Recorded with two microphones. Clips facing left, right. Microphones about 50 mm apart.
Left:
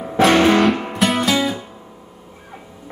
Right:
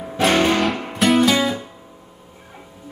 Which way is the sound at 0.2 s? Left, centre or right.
Centre.